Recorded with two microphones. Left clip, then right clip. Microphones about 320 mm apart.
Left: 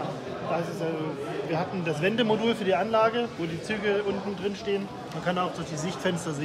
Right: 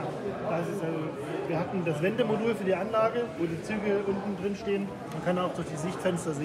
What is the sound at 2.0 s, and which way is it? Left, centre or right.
Speech, left.